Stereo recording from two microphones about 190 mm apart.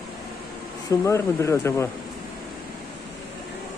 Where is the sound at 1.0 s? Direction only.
15° left (ahead or behind).